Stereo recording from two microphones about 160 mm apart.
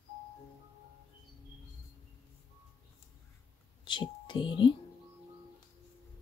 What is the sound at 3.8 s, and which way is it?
Speech, 30° left (ahead or behind).